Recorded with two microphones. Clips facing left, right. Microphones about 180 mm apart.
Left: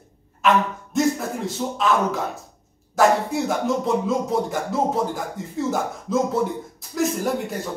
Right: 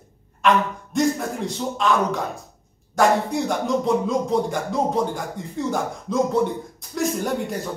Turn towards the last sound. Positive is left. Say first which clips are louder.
# even
turn(degrees=0)  # may be behind; listen again after turning